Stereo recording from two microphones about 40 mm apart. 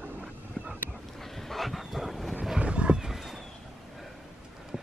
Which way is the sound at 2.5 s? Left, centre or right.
Right.